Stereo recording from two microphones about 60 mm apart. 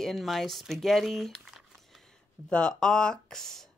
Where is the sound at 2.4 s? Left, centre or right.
Centre.